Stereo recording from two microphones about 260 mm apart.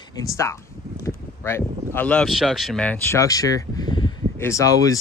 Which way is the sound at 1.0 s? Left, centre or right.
Centre.